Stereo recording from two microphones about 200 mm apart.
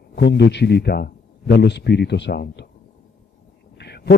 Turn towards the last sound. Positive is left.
turn(degrees=55)  # may be behind; listen again after turning